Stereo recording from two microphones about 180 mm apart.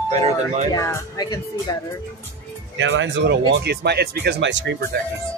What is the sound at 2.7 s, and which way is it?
Speech, 90° right.